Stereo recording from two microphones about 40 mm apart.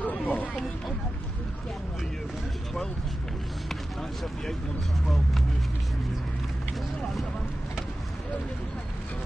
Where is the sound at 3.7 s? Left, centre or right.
Centre.